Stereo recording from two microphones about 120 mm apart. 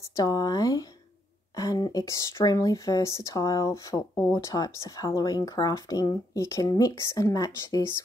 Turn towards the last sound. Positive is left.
turn(degrees=30)  # may be behind; listen again after turning